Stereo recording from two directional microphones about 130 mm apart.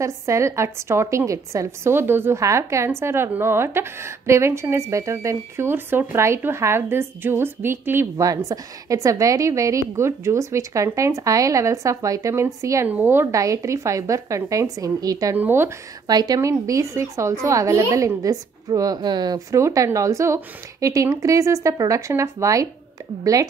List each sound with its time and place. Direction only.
0.0 s a woman's voice: 20° right (ahead or behind)
15.3 s speech: 15° right (ahead or behind)
16.1 s a woman's voice: 30° right (ahead or behind)